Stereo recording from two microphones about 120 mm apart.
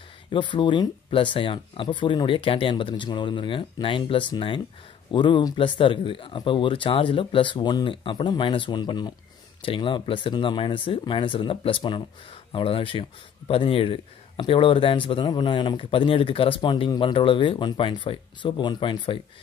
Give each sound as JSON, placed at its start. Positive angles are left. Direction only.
{"t": 0.3, "sound": "speech", "side_deg": 45}